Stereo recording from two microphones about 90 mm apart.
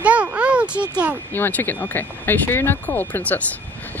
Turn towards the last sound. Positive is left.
turn(degrees=20)  # may be behind; listen again after turning